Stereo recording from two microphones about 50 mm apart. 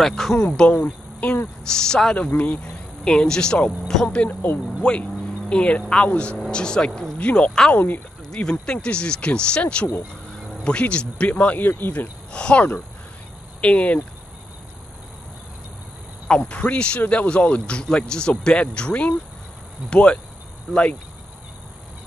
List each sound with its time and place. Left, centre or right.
0.0 s speech: centre; by 1.4 s left
1.6 s speech: centre
2.1 s speech: left
3.0 s speech: centre
4.3 s speech: left
4.8 s speech: left
7.7 s speech: left
8.4 s speech: centre; by 12.1 s left
12.3 s speech: left
16.3 s speech: centre